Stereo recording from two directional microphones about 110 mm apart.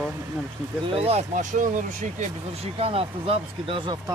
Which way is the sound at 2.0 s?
80° right.